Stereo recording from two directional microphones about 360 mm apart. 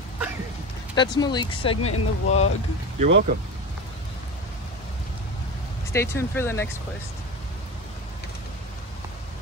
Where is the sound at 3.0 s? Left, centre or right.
Right.